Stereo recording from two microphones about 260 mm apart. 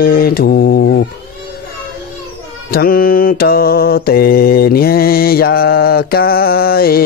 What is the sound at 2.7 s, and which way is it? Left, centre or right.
Mantra, left.